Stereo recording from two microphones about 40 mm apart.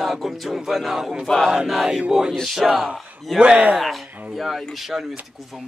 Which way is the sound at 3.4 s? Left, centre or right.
Right.